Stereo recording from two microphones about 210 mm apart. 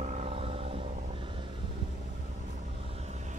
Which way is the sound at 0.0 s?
30° right (ahead or behind).